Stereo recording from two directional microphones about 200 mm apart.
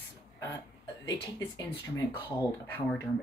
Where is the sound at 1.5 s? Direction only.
20° left (ahead or behind).